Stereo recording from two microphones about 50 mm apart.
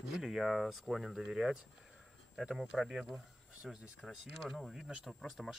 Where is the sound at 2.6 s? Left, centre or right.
Centre.